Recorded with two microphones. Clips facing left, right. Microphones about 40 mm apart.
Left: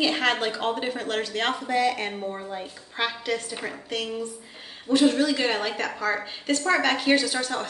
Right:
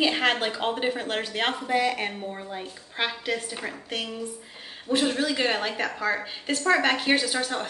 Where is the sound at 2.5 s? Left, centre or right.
Centre.